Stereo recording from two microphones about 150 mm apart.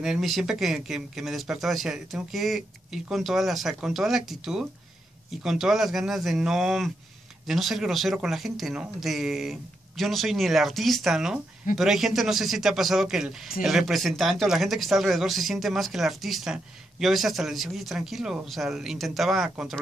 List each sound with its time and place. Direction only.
0.0 s speech: centre (ahead or behind)